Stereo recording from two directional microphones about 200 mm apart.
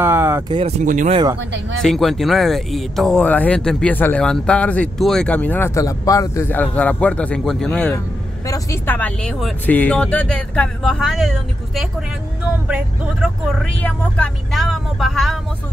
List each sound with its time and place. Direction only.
0.0 s a sound: 10° right (ahead or behind)
0.5 s speech: 30° right (ahead or behind)
1.8 s speech: centre (ahead or behind)